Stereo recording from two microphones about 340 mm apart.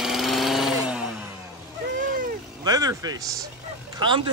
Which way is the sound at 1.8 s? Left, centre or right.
Right.